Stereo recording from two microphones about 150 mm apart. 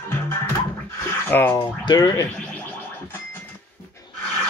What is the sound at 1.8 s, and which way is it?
Speech, 25° left (ahead or behind).